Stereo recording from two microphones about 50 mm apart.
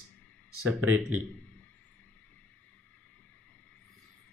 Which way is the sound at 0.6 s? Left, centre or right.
Right.